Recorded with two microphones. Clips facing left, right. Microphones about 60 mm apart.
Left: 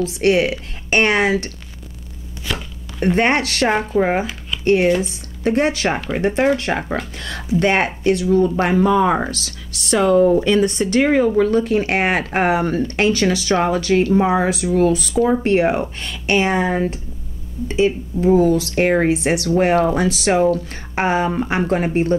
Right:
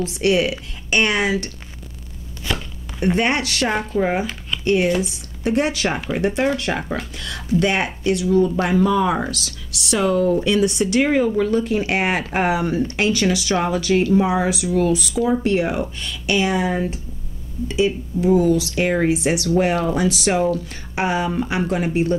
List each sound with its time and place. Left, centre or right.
0.0 s speech: left
3.2 s speech: left
3.7 s speech: left